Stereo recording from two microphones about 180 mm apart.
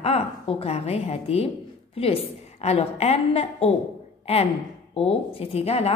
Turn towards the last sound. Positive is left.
turn(degrees=35)  # may be behind; listen again after turning